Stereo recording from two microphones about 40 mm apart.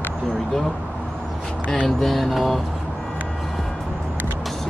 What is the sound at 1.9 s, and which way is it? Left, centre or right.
Speech, centre.